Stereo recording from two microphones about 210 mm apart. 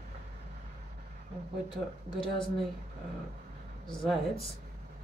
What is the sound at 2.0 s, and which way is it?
Speech, 20° left (ahead or behind).